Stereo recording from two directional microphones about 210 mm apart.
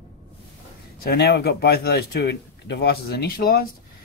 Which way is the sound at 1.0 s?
50° left (ahead or behind).